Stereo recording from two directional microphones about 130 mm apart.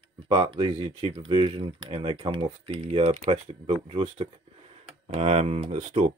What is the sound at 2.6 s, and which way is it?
Speech, 55° right (ahead or behind).